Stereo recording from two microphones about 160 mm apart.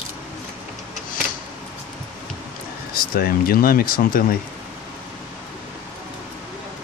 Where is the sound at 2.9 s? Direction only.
65° left (ahead or behind).